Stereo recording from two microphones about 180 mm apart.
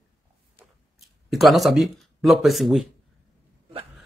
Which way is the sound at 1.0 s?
Centre (ahead or behind).